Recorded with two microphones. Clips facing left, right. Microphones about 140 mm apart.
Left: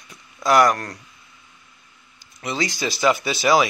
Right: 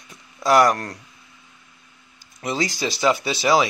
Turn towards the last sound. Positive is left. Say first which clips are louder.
# left 1 dB
turn(degrees=-30)  # may be behind; listen again after turning